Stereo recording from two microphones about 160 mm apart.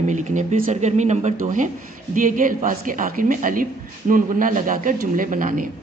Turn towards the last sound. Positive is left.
turn(degrees=-60)  # may be behind; listen again after turning